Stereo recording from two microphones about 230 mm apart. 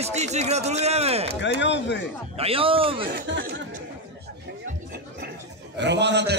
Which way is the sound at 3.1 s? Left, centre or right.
Right.